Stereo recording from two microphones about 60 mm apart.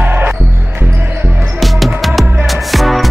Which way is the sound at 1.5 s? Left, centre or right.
Centre.